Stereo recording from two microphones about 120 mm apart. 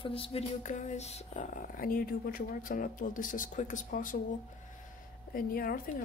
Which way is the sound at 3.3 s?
90° left.